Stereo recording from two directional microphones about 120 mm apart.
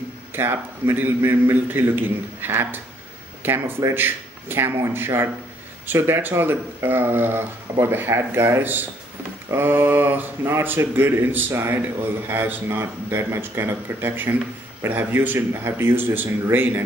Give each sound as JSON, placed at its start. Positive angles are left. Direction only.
{"t": 0.3, "sound": "a man's voice", "side_deg": -20}